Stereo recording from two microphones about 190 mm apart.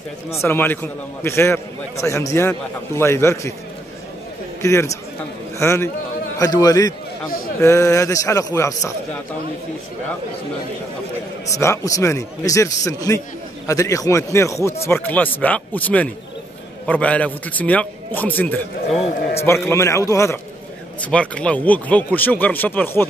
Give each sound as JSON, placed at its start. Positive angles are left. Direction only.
{"t": 0.3, "sound": "speech", "side_deg": 15}
{"t": 4.6, "sound": "a man's voice", "side_deg": 15}
{"t": 7.2, "sound": "a man's voice", "side_deg": 50}
{"t": 7.6, "sound": "speech", "side_deg": 15}
{"t": 11.5, "sound": "speech", "side_deg": 15}